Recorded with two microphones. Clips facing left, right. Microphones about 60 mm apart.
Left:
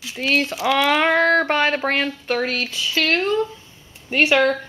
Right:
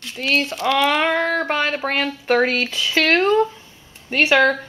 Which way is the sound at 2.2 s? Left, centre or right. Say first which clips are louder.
Right 5 dB; right.